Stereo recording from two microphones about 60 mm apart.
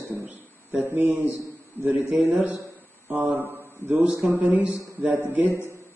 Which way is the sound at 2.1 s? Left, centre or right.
Right.